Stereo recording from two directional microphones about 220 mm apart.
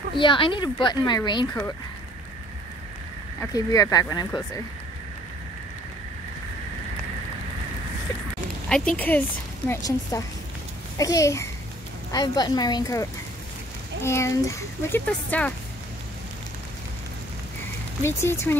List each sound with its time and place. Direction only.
0.1 s speech: 20° left (ahead or behind)
3.3 s a child's voice: 15° left (ahead or behind)
8.6 s a child's voice: 5° left (ahead or behind)
18.0 s a child's voice: 10° left (ahead or behind)